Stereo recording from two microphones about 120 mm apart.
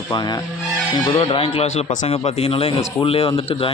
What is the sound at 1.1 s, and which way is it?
Speech, 45° left (ahead or behind).